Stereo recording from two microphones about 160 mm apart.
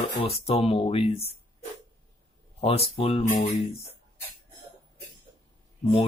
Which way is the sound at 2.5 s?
40° left (ahead or behind).